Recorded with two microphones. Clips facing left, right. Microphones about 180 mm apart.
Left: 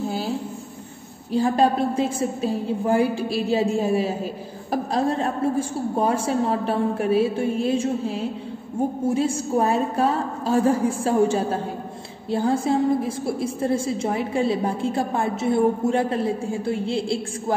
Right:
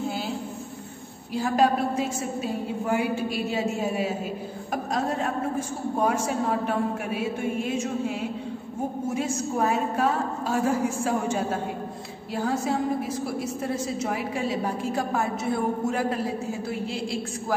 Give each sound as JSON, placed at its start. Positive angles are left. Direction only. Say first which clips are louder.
{"t": 1.3, "sound": "a woman's voice", "louder": "left 3 dB", "side_deg": 30}